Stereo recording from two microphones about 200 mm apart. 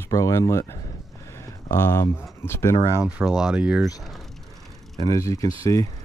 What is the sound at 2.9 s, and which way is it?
Speech, 10° right (ahead or behind).